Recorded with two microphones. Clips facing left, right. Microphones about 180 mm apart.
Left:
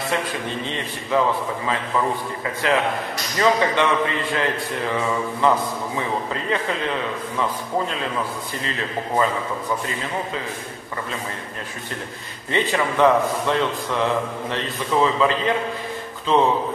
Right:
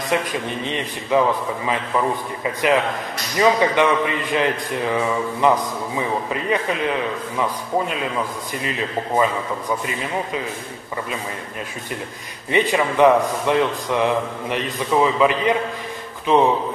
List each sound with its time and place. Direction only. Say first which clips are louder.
0.1 s a man's voice: right 5 dB; 15° right (ahead or behind)
2.4 s a man's voice: right 3 dB; 15° right (ahead or behind)
12.4 s a man's voice: right 3 dB; 15° right (ahead or behind)